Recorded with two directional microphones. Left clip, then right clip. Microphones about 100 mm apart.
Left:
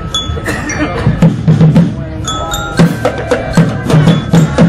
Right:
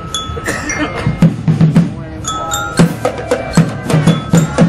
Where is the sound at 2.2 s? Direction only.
15° right (ahead or behind).